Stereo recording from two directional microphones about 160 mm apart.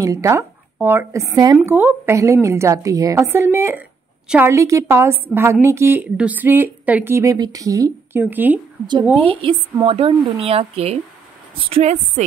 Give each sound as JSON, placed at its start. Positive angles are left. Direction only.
{"t": 0.0, "sound": "a woman's voice", "side_deg": -20}
{"t": 9.2, "sound": "a woman's voice", "side_deg": -35}